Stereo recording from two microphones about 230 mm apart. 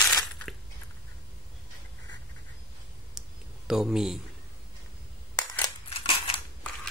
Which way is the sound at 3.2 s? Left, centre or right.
Centre.